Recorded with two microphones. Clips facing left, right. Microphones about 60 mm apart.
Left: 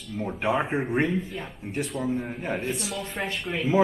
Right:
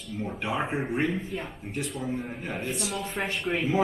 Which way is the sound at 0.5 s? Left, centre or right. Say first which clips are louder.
Left 1 dB; centre.